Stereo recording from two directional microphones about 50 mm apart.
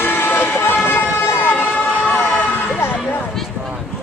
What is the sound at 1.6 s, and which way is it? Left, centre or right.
Vehicle, left.